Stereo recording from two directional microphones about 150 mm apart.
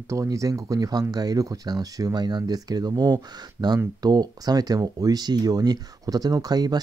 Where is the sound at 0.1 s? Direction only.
20° right (ahead or behind).